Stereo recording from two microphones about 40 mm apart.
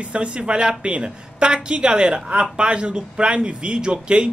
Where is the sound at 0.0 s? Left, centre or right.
Right.